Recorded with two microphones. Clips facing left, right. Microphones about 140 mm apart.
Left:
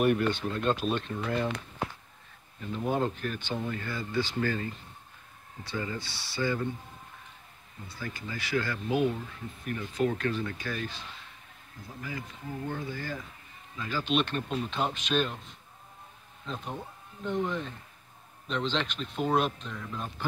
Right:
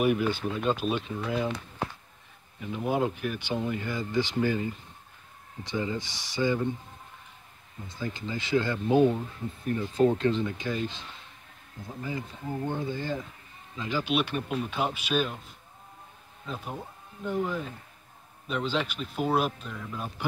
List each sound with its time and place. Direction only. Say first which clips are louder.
0.0 s speech: even; 5° right (ahead or behind)
2.6 s speech: right 2 dB; 10° right (ahead or behind)
7.9 s speech: right 5 dB; 20° right (ahead or behind); by 15.4 s 5° right (ahead or behind)
16.4 s speech: right 1 dB; 5° right (ahead or behind)